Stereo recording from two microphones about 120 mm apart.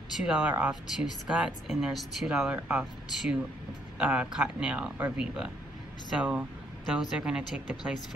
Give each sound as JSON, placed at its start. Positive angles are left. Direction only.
{"t": 0.2, "sound": "speech", "side_deg": -10}